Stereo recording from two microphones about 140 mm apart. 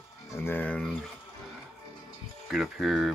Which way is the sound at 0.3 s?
15° left (ahead or behind).